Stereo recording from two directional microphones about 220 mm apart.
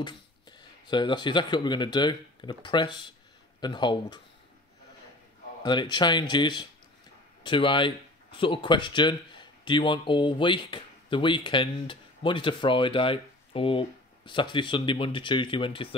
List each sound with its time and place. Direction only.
0.0 s speech: 20° left (ahead or behind)
5.6 s speech: 20° left (ahead or behind)